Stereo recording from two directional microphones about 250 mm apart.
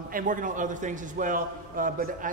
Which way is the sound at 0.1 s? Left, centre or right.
Right.